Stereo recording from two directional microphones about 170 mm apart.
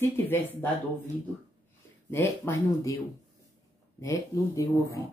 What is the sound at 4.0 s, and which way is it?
Speech, 20° left (ahead or behind).